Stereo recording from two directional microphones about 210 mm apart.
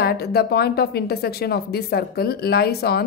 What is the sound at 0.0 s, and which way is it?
A woman's voice, 50° left (ahead or behind).